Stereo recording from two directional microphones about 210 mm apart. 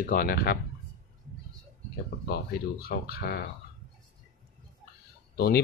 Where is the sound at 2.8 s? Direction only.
45° left (ahead or behind).